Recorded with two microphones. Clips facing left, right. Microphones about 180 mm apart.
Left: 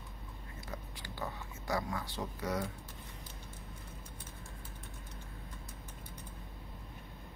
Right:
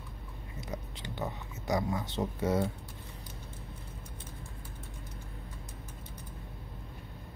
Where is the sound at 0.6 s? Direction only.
20° right (ahead or behind).